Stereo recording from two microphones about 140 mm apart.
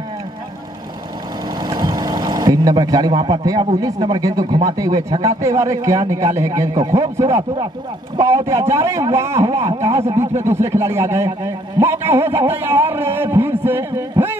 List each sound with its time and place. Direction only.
1.6 s a man's voice: 25° right (ahead or behind)